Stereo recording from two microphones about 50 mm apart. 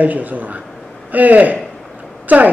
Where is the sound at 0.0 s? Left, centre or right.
Right.